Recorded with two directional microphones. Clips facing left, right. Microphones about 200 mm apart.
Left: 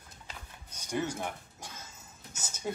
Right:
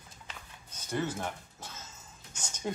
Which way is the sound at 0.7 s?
15° left (ahead or behind).